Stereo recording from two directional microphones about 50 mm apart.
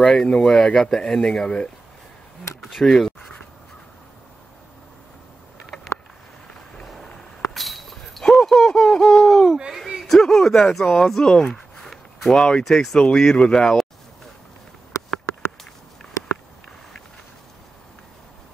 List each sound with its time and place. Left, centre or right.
0.0 s speech: centre
6.8 s a sound: centre
10.0 s speech: centre